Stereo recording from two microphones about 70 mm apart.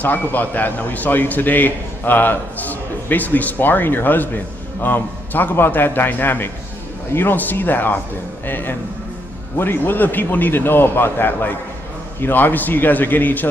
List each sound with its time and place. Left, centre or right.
0.0 s a man's voice: left